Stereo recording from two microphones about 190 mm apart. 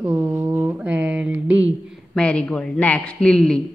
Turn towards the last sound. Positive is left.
turn(degrees=5)  # may be behind; listen again after turning